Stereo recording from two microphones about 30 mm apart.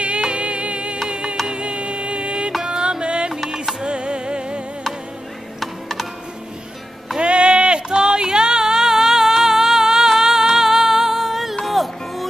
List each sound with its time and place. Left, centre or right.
0.2 s music: right
5.6 s computer keyboard: centre
7.2 s a sound: right; by 10.4 s centre
10.5 s music: centre